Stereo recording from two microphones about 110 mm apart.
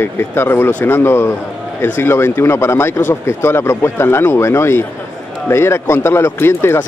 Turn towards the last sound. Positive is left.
turn(degrees=20)  # may be behind; listen again after turning